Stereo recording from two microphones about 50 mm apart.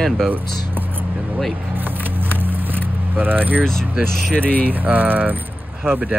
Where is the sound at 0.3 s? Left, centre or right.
Right.